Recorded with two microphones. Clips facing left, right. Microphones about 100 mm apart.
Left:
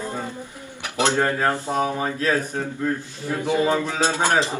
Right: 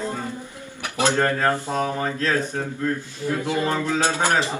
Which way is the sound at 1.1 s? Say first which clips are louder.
Even; 15° left (ahead or behind).